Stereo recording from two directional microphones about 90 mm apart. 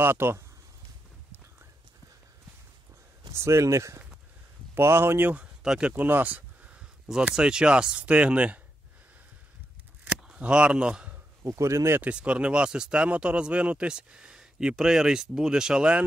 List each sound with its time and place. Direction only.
0.0 s speech: 25° right (ahead or behind)
3.3 s speech: 30° right (ahead or behind); by 8.5 s 15° right (ahead or behind)
10.0 s a sound: 15° right (ahead or behind)
11.4 s speech: 35° right (ahead or behind)
12.0 s speech: 10° right (ahead or behind)